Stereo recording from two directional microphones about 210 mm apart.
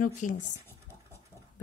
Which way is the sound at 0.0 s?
40° left (ahead or behind).